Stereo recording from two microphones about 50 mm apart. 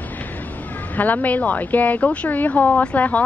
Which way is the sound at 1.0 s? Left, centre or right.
Left.